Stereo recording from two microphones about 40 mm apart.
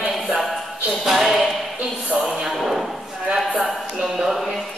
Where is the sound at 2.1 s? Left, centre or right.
Right.